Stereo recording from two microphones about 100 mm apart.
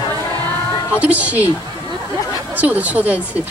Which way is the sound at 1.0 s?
15° right (ahead or behind).